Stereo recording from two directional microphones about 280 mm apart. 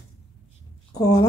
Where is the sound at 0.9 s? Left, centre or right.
Centre.